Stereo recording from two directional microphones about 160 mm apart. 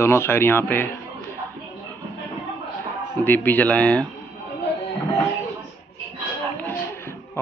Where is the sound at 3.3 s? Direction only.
10° left (ahead or behind).